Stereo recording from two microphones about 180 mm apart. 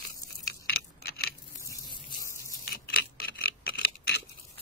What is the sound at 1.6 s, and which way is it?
Squish, 20° left (ahead or behind).